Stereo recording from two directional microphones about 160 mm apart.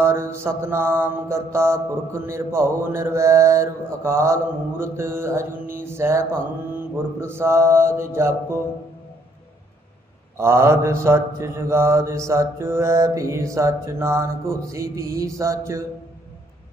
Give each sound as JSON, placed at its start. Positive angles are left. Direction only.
{"t": 0.0, "sound": "mantra", "side_deg": -15}
{"t": 10.3, "sound": "mantra", "side_deg": -15}